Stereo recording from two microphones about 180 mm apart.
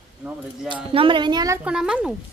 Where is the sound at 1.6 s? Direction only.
5° right (ahead or behind).